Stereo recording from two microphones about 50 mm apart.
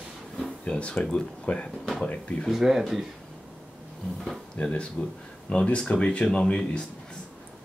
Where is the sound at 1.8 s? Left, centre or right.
Centre.